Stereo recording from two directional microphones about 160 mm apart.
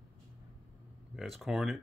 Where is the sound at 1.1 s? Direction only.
Centre (ahead or behind).